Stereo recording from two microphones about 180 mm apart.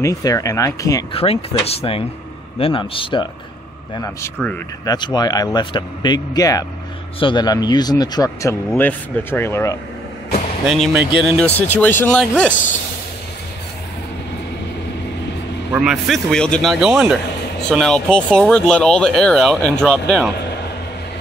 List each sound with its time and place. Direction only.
0.0 s speech: 20° left (ahead or behind)
1.1 s speech: 35° left (ahead or behind)
3.9 s speech: 15° left (ahead or behind)
4.9 s speech: 25° left (ahead or behind)
10.6 s speech: 5° right (ahead or behind)
15.7 s speech: 5° right (ahead or behind)